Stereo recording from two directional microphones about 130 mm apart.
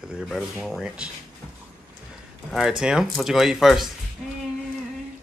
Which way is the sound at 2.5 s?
5° right (ahead or behind).